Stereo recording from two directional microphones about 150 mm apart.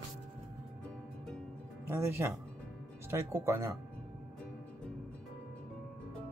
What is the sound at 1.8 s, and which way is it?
Speech, 15° right (ahead or behind).